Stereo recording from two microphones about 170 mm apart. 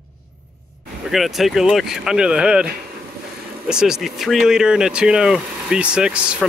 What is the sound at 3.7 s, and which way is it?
Speech, 5° right (ahead or behind).